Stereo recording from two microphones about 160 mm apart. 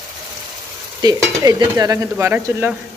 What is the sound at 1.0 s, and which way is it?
Stir, 25° right (ahead or behind).